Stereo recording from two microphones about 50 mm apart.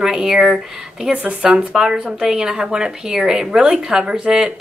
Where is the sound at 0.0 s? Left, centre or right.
Centre.